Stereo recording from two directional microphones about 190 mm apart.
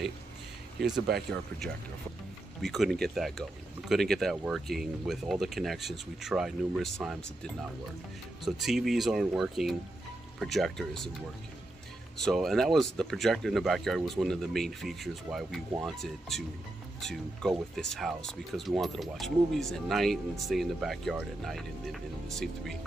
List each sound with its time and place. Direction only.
1.0 s speech: 60° right (ahead or behind)
2.6 s speech: centre (ahead or behind)
12.2 s speech: centre (ahead or behind)